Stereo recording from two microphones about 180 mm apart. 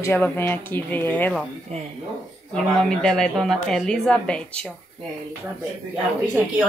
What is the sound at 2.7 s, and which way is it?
A woman's voice, 5° left (ahead or behind).